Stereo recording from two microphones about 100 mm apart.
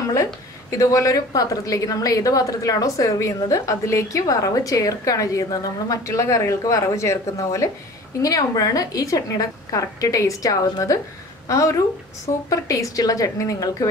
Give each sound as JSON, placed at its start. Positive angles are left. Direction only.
{"t": 0.1, "sound": "a woman's voice", "side_deg": 35}